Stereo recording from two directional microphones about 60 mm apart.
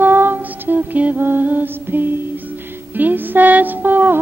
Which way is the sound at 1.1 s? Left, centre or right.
Right.